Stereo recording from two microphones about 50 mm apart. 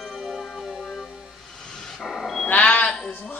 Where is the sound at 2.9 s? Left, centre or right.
Centre.